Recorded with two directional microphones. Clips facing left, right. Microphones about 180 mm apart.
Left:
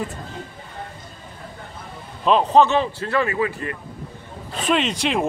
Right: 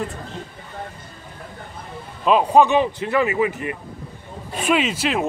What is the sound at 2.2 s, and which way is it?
Speech, 10° right (ahead or behind).